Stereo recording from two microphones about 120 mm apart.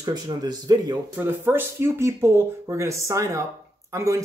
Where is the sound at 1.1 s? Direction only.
20° right (ahead or behind).